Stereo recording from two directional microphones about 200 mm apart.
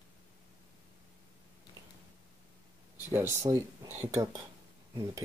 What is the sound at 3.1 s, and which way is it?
Speech, 15° right (ahead or behind).